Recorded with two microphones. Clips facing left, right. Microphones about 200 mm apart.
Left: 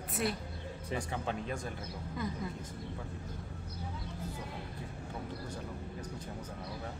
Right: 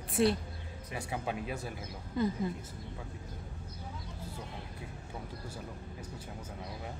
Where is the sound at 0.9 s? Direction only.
10° right (ahead or behind).